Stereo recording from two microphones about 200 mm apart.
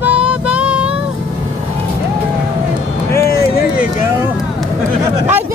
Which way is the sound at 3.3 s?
50° left (ahead or behind).